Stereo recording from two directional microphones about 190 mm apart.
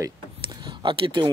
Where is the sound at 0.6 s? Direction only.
25° right (ahead or behind).